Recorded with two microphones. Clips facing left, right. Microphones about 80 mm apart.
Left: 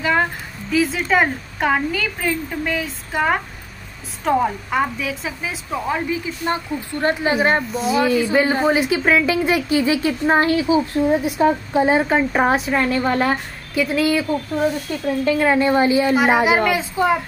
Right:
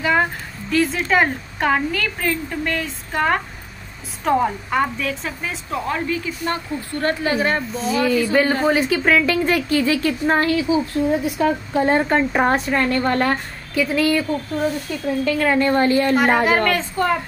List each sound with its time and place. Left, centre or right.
0.0 s a woman's voice: centre; by 7.6 s left
7.7 s a woman's voice: centre
10.4 s a woman's voice: left
11.7 s a woman's voice: centre